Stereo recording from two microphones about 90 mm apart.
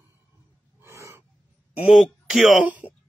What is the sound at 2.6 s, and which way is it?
Speech, 15° right (ahead or behind).